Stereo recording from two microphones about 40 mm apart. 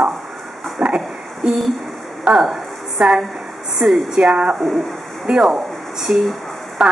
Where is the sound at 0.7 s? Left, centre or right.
Centre.